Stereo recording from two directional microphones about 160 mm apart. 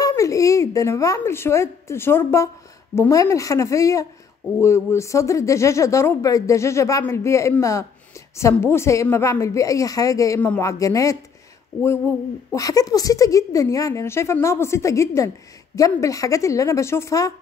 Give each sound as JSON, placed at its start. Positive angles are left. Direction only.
{"t": 0.0, "sound": "a woman's voice", "side_deg": 20}
{"t": 12.5, "sound": "a woman's voice", "side_deg": 20}